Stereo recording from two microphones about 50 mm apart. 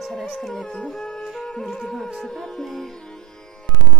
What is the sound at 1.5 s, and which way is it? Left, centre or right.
Speech, centre.